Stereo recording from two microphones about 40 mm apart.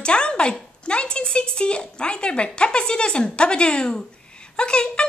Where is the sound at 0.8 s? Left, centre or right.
Left.